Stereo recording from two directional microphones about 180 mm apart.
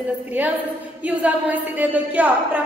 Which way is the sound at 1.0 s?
10° right (ahead or behind).